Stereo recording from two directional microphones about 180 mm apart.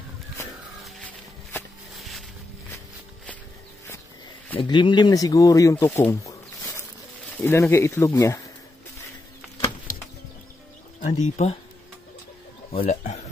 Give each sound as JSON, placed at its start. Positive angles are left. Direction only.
{"t": 2.0, "sound": "music", "side_deg": 0}
{"t": 4.6, "sound": "speech", "side_deg": 25}
{"t": 5.9, "sound": "a sound", "side_deg": 10}
{"t": 7.3, "sound": "speech", "side_deg": 15}
{"t": 11.0, "sound": "speech", "side_deg": 40}
{"t": 12.8, "sound": "speech", "side_deg": 40}